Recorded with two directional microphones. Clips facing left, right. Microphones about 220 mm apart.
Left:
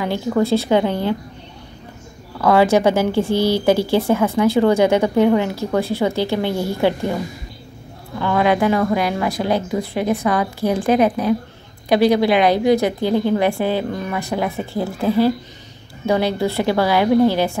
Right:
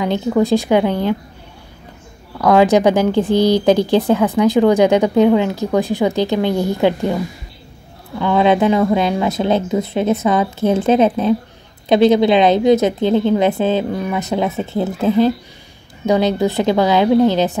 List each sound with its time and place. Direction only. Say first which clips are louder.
0.4 s speech: right 2 dB; 15° right (ahead or behind)
2.4 s speech: right 2 dB; 15° right (ahead or behind)
8.2 s speech: right 3 dB; 20° right (ahead or behind)